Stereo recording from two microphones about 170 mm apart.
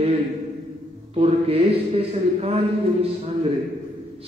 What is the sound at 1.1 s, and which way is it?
A man's voice, 35° right (ahead or behind).